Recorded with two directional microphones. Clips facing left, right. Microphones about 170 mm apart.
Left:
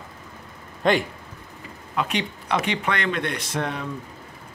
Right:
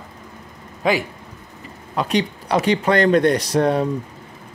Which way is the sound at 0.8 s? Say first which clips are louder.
Right 1 dB; 5° right (ahead or behind).